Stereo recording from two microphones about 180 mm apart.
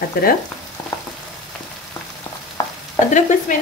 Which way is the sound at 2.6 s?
20° left (ahead or behind).